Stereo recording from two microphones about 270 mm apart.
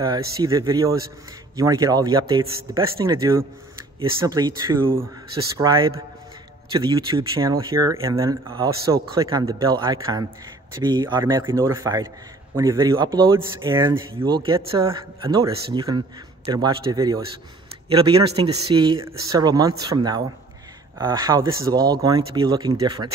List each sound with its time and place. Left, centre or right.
0.0 s speech: centre